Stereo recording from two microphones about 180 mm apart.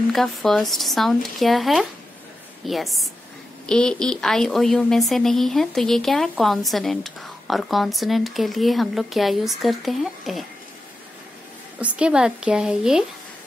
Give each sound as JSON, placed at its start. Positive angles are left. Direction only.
{"t": 0.1, "sound": "speech", "side_deg": 0}
{"t": 11.8, "sound": "speech", "side_deg": -5}